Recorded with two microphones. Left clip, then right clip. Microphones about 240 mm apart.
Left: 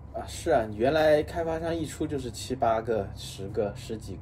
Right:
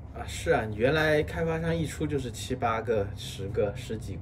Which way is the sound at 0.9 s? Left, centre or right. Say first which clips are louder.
Left 5 dB; left.